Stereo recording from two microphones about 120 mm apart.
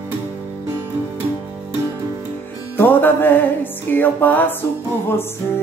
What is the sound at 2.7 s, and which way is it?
Music, 15° left (ahead or behind).